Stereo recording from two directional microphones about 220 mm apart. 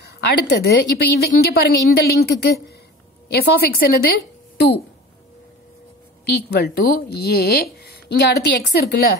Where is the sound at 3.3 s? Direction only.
45° left (ahead or behind).